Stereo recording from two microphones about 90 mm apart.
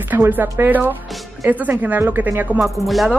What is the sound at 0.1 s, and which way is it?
A woman's voice, 20° right (ahead or behind).